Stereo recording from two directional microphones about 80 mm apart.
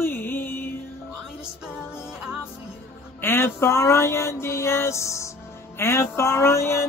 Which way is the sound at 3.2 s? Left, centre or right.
Left.